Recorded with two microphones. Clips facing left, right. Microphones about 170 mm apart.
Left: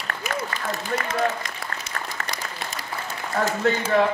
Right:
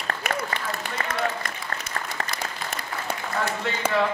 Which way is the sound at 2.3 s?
65° right (ahead or behind).